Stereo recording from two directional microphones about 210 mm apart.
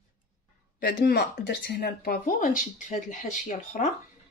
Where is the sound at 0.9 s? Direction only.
55° left (ahead or behind); by 3.9 s 35° left (ahead or behind).